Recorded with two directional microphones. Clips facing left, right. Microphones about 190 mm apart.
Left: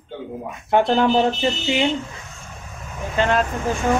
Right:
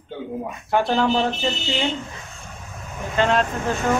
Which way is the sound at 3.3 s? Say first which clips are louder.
Even; 15° left (ahead or behind).